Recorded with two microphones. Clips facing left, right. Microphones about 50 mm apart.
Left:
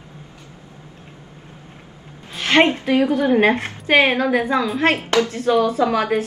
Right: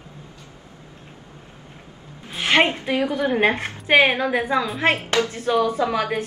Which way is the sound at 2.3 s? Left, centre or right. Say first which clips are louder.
Left 3 dB; centre.